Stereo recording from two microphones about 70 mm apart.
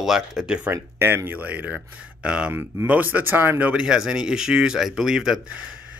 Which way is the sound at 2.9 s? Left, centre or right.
Right.